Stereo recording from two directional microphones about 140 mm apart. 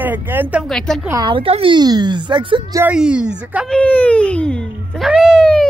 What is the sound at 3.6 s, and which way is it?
Speech, 10° left (ahead or behind).